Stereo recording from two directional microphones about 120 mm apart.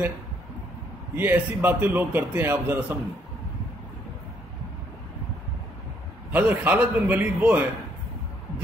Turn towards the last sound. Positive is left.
turn(degrees=-15)  # may be behind; listen again after turning